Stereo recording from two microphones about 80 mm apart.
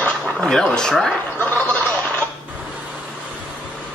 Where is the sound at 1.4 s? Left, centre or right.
Centre.